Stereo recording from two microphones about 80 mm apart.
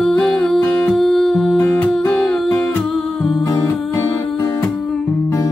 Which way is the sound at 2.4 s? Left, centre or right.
Left.